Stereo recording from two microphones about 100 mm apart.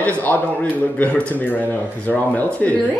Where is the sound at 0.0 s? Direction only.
15° left (ahead or behind).